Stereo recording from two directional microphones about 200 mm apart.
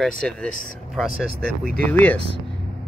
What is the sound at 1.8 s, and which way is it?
Speech, 10° left (ahead or behind).